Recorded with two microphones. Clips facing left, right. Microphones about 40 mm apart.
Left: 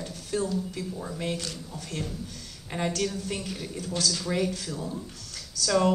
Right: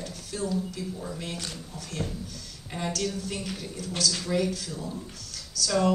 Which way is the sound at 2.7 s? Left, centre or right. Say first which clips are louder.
Left 2 dB; centre.